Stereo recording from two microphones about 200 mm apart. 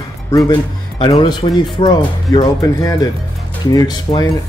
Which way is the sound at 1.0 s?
20° left (ahead or behind).